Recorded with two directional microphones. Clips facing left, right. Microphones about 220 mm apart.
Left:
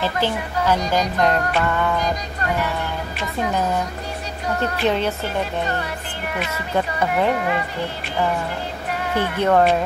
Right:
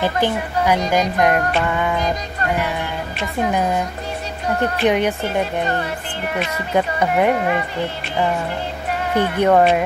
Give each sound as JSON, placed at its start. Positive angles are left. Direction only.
{"t": 0.0, "sound": "speech", "side_deg": -15}
{"t": 4.8, "sound": "speech", "side_deg": -15}
{"t": 6.7, "sound": "speech", "side_deg": -15}
{"t": 9.1, "sound": "speech", "side_deg": -15}